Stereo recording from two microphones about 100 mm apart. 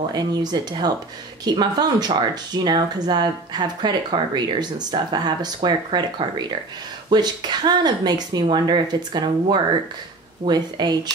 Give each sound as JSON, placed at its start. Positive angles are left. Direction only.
{"t": 0.1, "sound": "speech", "side_deg": -45}